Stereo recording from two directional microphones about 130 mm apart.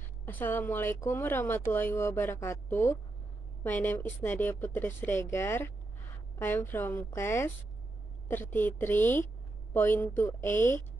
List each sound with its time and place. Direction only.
0.2 s a woman's voice: 15° left (ahead or behind)